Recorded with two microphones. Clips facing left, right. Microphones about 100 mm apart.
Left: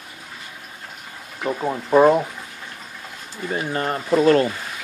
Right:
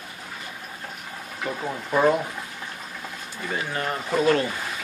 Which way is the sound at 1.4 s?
25° left (ahead or behind).